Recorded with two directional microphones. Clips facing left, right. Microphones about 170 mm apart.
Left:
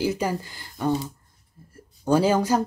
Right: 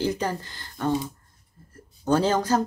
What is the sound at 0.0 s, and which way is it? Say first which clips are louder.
Speech: left 1 dB; 10° left (ahead or behind).